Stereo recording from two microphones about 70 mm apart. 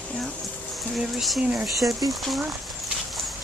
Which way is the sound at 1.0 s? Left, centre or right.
Centre.